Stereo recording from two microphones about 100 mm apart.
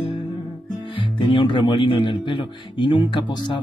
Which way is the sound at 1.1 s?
50° left (ahead or behind).